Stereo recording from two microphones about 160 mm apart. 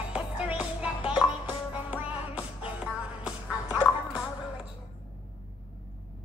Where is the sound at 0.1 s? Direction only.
5° right (ahead or behind).